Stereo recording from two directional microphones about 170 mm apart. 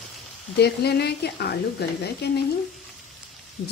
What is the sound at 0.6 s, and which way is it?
A woman's voice, 70° left (ahead or behind).